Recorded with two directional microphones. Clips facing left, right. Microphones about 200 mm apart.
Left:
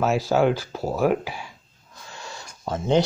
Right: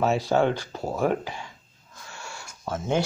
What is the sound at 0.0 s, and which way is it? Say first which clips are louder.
Speech: left 2 dB; centre (ahead or behind).